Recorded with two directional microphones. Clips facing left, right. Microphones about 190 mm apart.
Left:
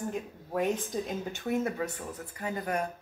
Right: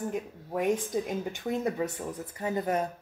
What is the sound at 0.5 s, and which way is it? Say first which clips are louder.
Speech: right 2 dB; 15° right (ahead or behind).